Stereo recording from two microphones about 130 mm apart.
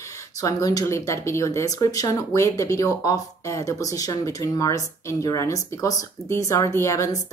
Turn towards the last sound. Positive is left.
turn(degrees=25)  # may be behind; listen again after turning